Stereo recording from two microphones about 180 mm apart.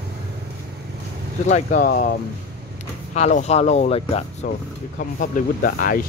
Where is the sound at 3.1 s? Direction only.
40° left (ahead or behind).